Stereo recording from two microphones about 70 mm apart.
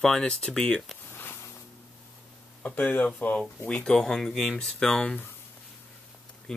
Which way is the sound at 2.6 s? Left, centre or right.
Left.